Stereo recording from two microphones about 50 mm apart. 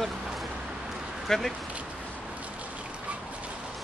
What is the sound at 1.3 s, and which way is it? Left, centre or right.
Speech, centre.